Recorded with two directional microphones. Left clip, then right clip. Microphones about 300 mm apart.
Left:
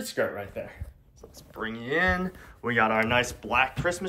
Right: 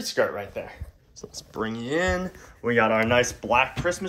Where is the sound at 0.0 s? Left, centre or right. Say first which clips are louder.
Right 4 dB; right.